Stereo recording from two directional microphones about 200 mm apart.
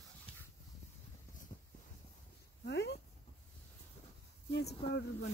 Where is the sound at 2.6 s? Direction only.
55° left (ahead or behind).